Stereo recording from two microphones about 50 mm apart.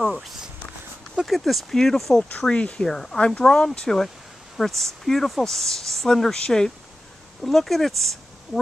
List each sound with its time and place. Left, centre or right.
0.0 s speech: centre
2.3 s speech: left
2.8 s speech: centre